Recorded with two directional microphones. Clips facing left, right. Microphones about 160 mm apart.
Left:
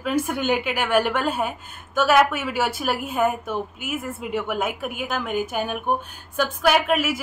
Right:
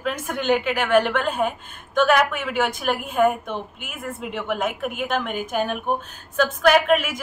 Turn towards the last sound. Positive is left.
turn(degrees=5)  # may be behind; listen again after turning